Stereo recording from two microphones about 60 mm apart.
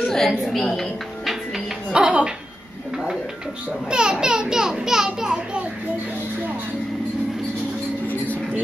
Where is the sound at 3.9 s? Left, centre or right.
Centre.